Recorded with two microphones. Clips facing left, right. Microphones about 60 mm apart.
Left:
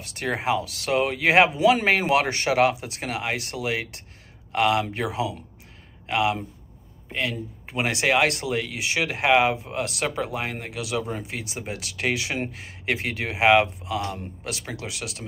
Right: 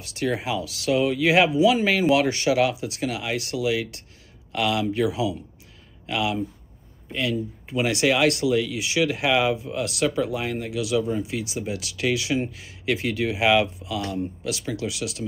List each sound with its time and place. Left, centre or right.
0.0 s speech: left